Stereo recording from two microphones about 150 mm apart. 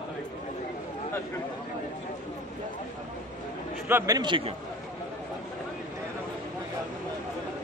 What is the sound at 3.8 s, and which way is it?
Speech, 20° right (ahead or behind).